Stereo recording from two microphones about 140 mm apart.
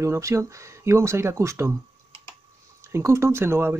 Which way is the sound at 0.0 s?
20° right (ahead or behind).